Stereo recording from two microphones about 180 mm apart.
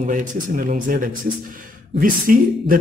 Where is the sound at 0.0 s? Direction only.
45° right (ahead or behind).